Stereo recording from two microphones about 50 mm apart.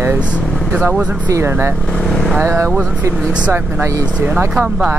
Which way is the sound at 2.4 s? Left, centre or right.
Right.